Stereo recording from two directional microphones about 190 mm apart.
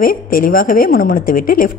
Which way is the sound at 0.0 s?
50° left (ahead or behind).